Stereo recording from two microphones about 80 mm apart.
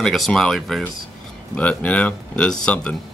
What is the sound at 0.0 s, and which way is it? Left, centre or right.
Speech, centre.